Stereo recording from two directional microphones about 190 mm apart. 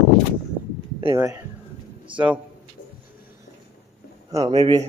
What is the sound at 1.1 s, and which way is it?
Speech, 15° right (ahead or behind).